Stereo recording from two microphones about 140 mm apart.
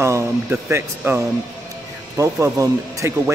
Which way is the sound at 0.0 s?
15° right (ahead or behind).